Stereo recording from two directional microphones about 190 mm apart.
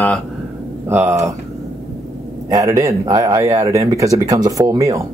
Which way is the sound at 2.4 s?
20° right (ahead or behind).